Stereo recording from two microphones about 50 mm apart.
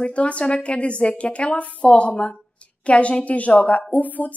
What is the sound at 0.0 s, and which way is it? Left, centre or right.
A woman's voice, left.